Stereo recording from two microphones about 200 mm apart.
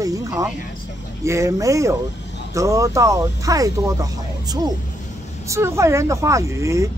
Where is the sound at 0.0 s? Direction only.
15° right (ahead or behind).